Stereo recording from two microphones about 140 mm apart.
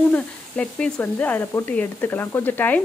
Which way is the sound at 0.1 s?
10° left (ahead or behind).